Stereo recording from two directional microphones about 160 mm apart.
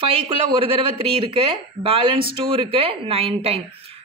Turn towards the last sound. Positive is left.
turn(degrees=-40)  # may be behind; listen again after turning